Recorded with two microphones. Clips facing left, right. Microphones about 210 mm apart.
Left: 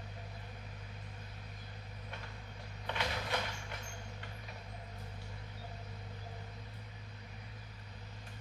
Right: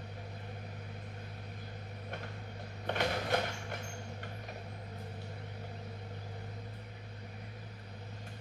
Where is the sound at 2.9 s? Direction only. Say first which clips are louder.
Right 6 dB; 50° right (ahead or behind).